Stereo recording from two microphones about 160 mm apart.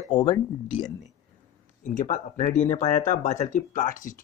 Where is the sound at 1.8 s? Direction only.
50° left (ahead or behind).